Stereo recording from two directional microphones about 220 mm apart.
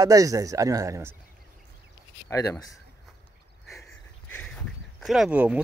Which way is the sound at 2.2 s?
15° left (ahead or behind).